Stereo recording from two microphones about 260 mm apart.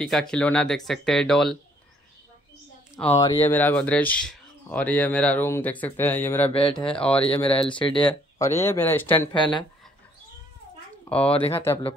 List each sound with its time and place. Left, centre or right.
0.0 s speech: centre
3.0 s speech: centre
7.2 s speech: centre
8.0 s speech: centre
11.1 s speech: centre